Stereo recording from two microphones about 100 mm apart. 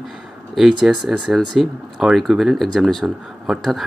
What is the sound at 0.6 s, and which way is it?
Speech, 5° right (ahead or behind).